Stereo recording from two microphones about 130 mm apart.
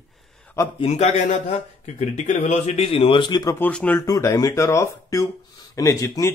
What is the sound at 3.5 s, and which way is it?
Speech, 15° left (ahead or behind).